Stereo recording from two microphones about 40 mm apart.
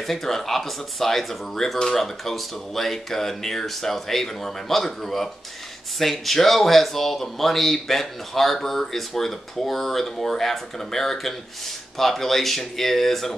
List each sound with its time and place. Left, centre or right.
0.0 s speech: centre